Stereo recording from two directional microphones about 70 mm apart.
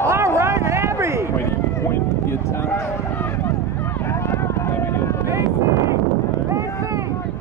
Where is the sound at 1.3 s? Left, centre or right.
Left.